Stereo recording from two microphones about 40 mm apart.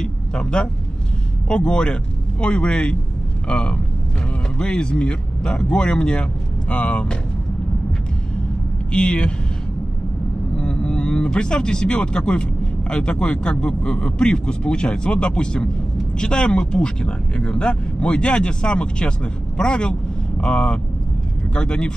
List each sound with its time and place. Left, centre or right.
0.0 s speech: left
8.9 s speech: left
10.5 s vehicle: left
11.3 s speech: left